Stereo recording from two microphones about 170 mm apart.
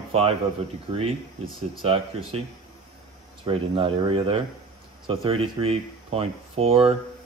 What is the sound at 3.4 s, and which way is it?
Speech, 30° right (ahead or behind).